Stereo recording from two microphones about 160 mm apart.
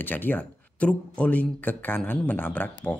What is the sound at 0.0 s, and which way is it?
A man's voice, 10° left (ahead or behind).